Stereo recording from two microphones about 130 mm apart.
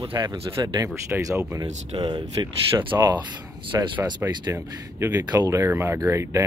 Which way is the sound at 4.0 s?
25° right (ahead or behind).